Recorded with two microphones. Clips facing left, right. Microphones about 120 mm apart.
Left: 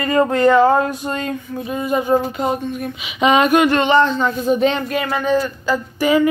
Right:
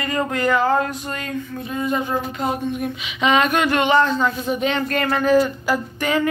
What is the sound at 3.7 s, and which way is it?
Speech, 5° right (ahead or behind).